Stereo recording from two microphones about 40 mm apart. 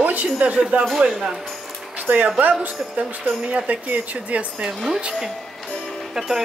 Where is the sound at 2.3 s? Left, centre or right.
Right.